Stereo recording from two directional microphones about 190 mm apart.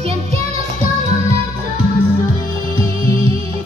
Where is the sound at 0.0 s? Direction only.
30° right (ahead or behind).